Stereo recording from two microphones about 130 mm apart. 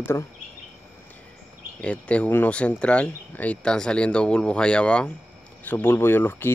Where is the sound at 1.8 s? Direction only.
10° left (ahead or behind).